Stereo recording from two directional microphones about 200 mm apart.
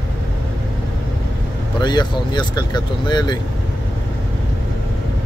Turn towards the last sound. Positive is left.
turn(degrees=20)  # may be behind; listen again after turning